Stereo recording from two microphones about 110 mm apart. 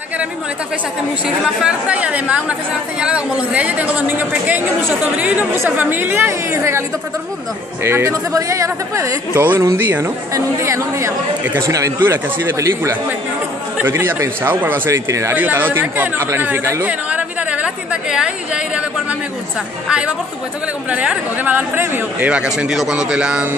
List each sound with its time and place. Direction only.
1.2 s speech: 10° right (ahead or behind); by 6.8 s 25° right (ahead or behind)
7.8 s speech: 20° right (ahead or behind)
16.8 s a sound: 10° right (ahead or behind)
18.1 s a woman's voice: 10° right (ahead or behind)